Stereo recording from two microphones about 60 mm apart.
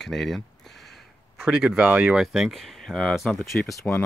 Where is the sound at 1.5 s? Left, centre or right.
Centre.